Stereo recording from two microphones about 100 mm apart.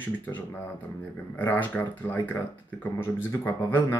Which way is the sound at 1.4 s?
20° left (ahead or behind).